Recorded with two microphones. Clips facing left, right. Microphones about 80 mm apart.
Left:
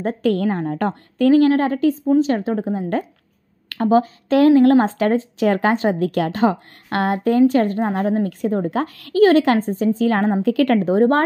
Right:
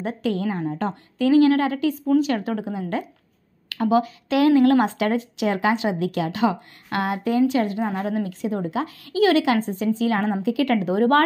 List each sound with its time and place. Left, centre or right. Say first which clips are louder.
0.0 s a woman's voice: left 5 dB; left
9.2 s speech: left 5 dB; left